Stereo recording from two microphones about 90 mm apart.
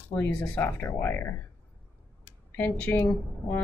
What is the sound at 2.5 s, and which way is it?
Speech, 15° left (ahead or behind).